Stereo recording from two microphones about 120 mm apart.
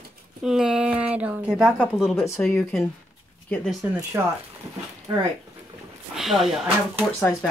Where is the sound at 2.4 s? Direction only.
15° left (ahead or behind).